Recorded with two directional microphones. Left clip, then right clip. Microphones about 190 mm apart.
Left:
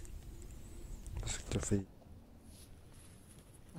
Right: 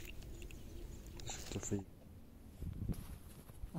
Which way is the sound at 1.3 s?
60° left (ahead or behind).